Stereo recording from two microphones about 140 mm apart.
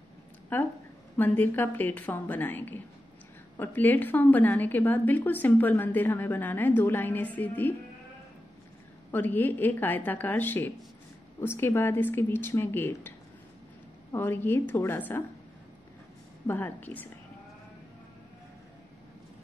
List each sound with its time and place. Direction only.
0.5 s a woman's voice: 15° left (ahead or behind)
9.1 s a woman's voice: 15° left (ahead or behind)
14.1 s a woman's voice: 15° left (ahead or behind)
16.4 s a woman's voice: 15° left (ahead or behind)